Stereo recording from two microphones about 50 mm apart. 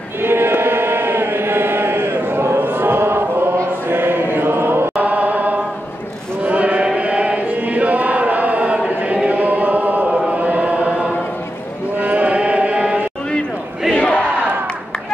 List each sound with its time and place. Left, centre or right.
0.2 s chant: right
2.6 s a sound: right
3.9 s choir: right
5.0 s chant: right
6.4 s a sound: right
7.0 s chant: right
9.0 s choir: right
12.0 s chant: right
13.9 s battle cry: left